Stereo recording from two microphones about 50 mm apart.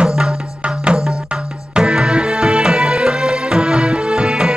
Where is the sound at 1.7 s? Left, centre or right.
Centre.